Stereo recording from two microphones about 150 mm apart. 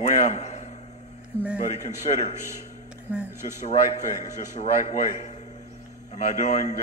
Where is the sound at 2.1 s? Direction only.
40° left (ahead or behind).